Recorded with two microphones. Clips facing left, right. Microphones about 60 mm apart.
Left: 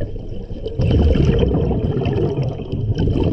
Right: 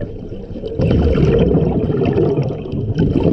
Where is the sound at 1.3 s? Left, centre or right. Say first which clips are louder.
Right 4 dB; right.